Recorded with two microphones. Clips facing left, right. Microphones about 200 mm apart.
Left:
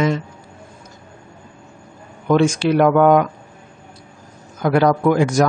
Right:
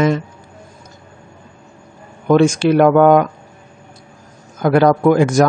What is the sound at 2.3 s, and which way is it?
A man's voice, 50° right (ahead or behind).